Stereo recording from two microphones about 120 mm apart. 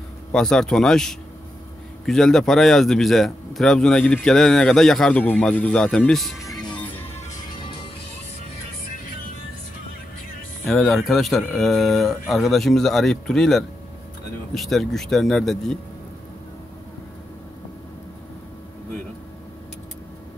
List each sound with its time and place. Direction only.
0.3 s a man's voice: 5° left (ahead or behind)
6.7 s music: 15° left (ahead or behind)
10.6 s a man's voice: centre (ahead or behind)